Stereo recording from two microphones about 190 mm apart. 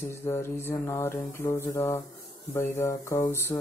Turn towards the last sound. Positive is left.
turn(degrees=10)  # may be behind; listen again after turning